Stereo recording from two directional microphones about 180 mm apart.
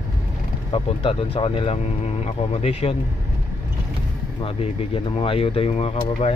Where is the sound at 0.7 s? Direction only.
30° left (ahead or behind).